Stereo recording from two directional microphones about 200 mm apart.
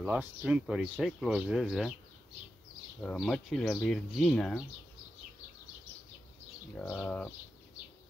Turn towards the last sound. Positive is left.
turn(degrees=5)  # may be behind; listen again after turning